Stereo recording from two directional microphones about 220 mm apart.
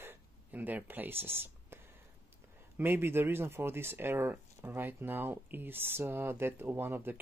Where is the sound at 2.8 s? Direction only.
10° right (ahead or behind).